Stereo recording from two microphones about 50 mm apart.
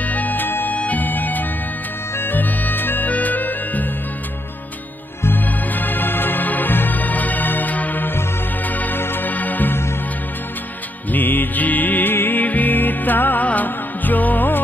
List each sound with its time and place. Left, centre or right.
0.0 s music: left
5.2 s music: left
11.1 s music: left